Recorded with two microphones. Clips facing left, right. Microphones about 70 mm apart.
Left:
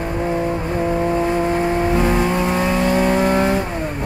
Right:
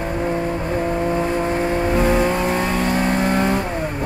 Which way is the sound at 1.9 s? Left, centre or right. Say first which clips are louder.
Even; centre.